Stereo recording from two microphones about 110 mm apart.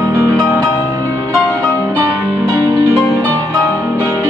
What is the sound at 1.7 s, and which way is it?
Music, 25° right (ahead or behind).